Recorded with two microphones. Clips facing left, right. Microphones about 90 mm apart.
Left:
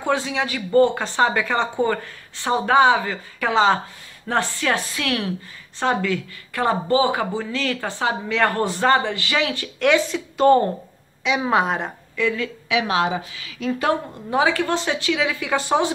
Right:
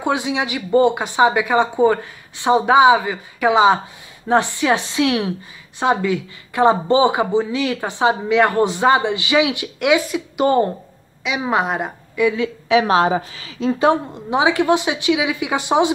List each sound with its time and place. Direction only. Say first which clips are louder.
0.0 s a woman's voice: right 2 dB; 15° right (ahead or behind)
12.6 s a woman's voice: right 6 dB; 35° right (ahead or behind); by 15.9 s 15° right (ahead or behind)